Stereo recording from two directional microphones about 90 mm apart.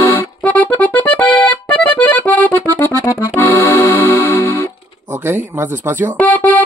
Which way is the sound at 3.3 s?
30° left (ahead or behind).